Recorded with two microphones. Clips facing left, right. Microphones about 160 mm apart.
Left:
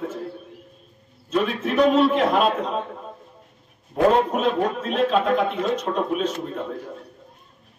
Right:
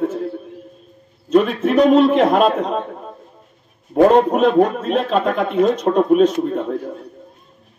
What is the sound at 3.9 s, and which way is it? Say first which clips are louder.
A man's voice: right 6 dB; 50° right (ahead or behind).